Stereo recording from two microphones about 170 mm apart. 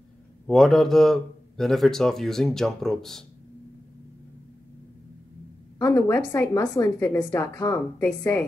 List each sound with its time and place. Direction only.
0.5 s speech: centre (ahead or behind)
5.8 s a woman's voice: 15° left (ahead or behind)